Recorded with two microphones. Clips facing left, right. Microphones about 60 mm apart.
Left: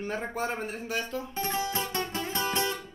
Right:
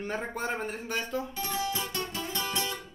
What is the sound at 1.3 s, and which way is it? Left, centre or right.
Music, left.